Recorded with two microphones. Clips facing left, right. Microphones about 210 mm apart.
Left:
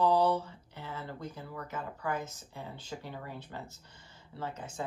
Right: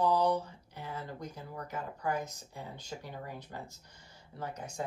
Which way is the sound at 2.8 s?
45° right (ahead or behind).